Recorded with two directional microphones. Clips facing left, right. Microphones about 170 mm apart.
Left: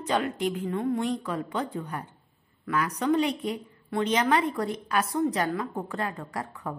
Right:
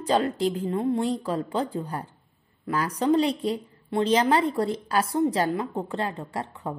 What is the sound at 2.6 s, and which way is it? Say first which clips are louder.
A woman's voice: right 2 dB; 30° right (ahead or behind).